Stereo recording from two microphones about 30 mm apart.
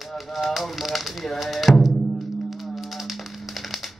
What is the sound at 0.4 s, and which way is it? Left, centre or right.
Speech, centre.